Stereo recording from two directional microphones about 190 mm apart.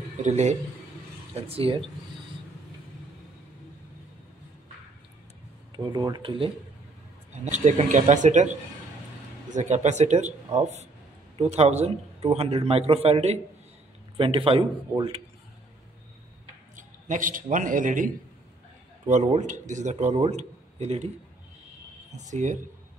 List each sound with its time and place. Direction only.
0.2 s a man's voice: 35° right (ahead or behind)
5.8 s a man's voice: 20° right (ahead or behind)
7.4 s a man's voice: 40° right (ahead or behind)
9.5 s a man's voice: 40° right (ahead or behind)
16.7 s a man's voice: 45° right (ahead or behind)
22.1 s a man's voice: 40° right (ahead or behind)